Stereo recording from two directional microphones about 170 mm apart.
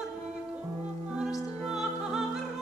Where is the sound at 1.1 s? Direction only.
5° right (ahead or behind).